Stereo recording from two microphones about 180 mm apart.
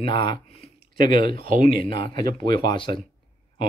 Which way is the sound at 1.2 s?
55° right (ahead or behind).